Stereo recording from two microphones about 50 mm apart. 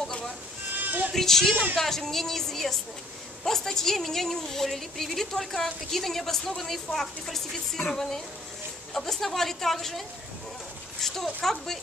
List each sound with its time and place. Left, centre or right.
0.7 s sheep: right
1.1 s a woman's voice: centre